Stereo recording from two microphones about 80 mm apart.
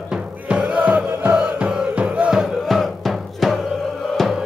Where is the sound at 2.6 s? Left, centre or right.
Centre.